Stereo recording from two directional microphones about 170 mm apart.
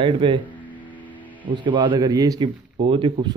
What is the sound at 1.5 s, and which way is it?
Speech, 30° right (ahead or behind).